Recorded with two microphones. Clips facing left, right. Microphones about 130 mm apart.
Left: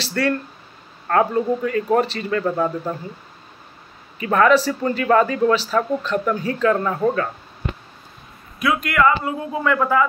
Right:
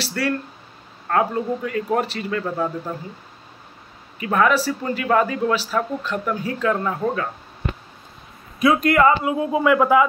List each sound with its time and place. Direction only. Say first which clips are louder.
0.0 s a sound: left 3 dB; 10° right (ahead or behind)
1.0 s a man's voice: left 3 dB; 5° right (ahead or behind)
4.2 s speech: left 3 dB; 5° right (ahead or behind)
8.5 s a man's voice: right 3 dB; 30° right (ahead or behind)
9.2 s speech: right 4 dB; 15° right (ahead or behind)